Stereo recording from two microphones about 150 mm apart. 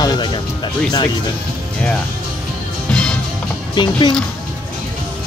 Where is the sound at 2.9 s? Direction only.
5° left (ahead or behind).